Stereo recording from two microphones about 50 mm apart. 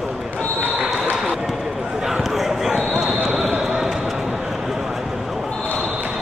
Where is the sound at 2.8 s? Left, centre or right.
Right.